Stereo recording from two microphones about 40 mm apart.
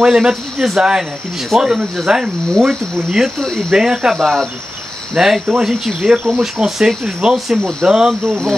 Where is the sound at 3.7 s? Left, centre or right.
Centre.